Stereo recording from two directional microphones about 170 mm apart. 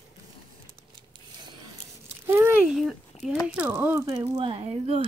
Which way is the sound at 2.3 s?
15° right (ahead or behind).